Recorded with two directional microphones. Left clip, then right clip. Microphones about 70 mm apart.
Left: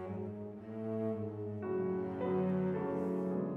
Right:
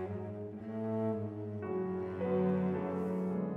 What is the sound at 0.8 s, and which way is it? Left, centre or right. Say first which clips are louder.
Cello: right 2 dB; right.